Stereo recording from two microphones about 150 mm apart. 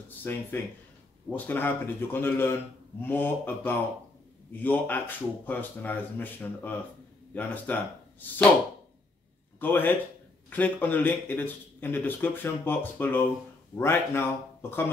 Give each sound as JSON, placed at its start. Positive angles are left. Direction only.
{"t": 0.2, "sound": "speech", "side_deg": 15}
{"t": 9.6, "sound": "speech", "side_deg": 10}